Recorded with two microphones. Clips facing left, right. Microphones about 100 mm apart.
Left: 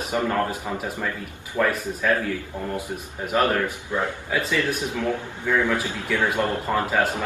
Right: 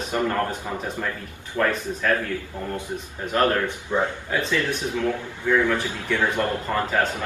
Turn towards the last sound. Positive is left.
turn(degrees=15)  # may be behind; listen again after turning